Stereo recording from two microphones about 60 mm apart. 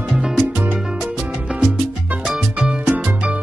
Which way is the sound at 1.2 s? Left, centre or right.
Right.